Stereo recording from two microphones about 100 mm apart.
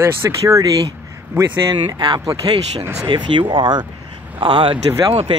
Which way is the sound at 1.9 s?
45° right (ahead or behind).